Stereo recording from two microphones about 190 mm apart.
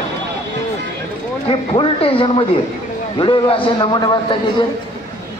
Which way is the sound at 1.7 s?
30° left (ahead or behind).